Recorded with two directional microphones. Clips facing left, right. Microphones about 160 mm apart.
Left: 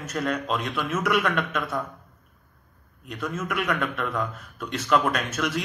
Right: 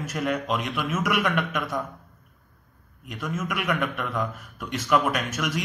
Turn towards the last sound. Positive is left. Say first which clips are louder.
# left 1 dB
turn(degrees=-10)  # may be behind; listen again after turning